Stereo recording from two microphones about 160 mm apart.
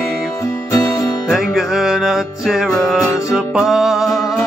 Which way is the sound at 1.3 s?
Centre (ahead or behind).